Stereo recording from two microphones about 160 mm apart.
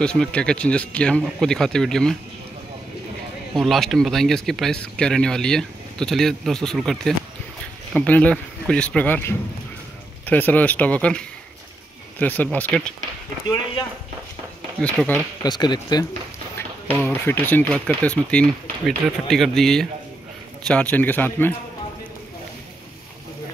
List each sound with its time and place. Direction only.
0.0 s speech: 5° left (ahead or behind)
3.5 s speech: centre (ahead or behind)
14.8 s speech: 5° left (ahead or behind)
15.4 s speech: 25° left (ahead or behind)
17.0 s speech: 10° left (ahead or behind)